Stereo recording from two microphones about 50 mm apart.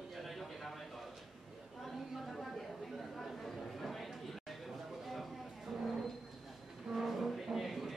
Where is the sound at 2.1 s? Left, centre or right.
Centre.